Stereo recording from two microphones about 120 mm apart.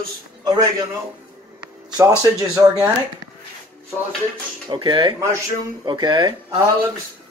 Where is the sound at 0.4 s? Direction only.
30° right (ahead or behind).